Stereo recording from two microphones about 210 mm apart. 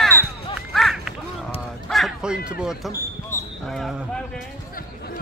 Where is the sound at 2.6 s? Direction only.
Centre (ahead or behind).